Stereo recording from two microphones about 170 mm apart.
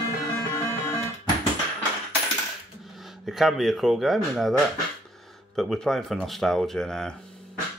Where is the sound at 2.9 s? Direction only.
Centre (ahead or behind).